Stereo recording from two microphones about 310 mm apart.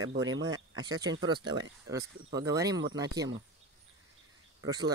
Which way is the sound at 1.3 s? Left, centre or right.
Centre.